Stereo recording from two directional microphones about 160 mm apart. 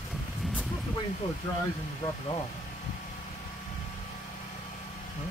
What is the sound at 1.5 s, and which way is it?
Speech, 15° left (ahead or behind).